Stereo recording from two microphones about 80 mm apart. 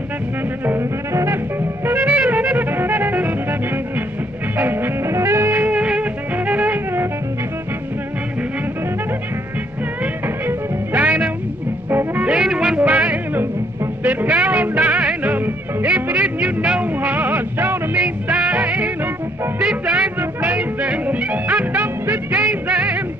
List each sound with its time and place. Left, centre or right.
0.7 s music: right
10.2 s music: right